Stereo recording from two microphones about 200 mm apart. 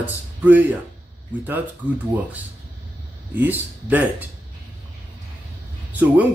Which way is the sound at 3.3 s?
10° right (ahead or behind).